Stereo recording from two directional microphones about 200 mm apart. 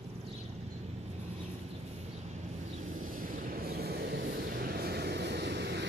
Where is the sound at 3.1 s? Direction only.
45° right (ahead or behind).